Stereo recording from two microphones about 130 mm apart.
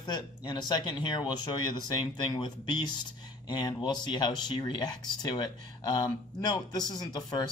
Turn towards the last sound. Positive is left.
turn(degrees=30)  # may be behind; listen again after turning